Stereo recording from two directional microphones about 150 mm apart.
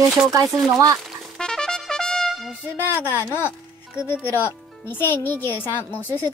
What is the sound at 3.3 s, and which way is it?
Speech, 15° left (ahead or behind).